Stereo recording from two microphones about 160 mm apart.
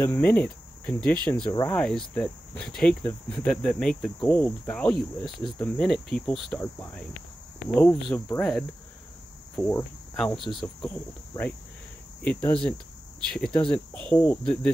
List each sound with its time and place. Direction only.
0.0 s speech: 10° left (ahead or behind)
1.7 s cricket: 5° left (ahead or behind)
6.6 s speech: 10° left (ahead or behind)
8.4 s cricket: 5° left (ahead or behind)
12.2 s speech: 10° left (ahead or behind)
13.3 s cricket: 5° left (ahead or behind)